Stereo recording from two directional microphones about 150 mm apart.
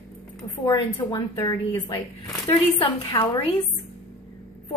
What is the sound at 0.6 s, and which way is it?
A woman's voice, 30° left (ahead or behind).